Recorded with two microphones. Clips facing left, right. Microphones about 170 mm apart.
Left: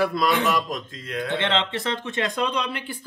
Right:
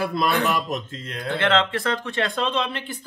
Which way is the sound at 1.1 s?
35° right (ahead or behind).